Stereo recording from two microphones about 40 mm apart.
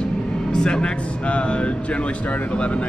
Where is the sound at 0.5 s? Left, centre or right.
Centre.